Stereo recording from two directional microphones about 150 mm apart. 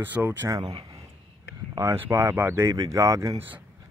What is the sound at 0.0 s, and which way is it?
Speech, 10° right (ahead or behind).